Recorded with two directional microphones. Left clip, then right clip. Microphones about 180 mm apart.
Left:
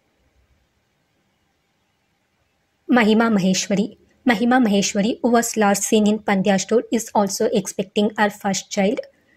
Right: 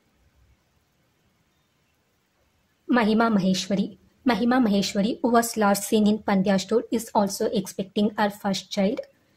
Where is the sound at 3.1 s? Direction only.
15° left (ahead or behind).